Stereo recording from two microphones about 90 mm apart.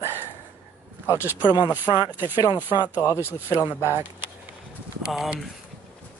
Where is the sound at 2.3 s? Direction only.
50° left (ahead or behind).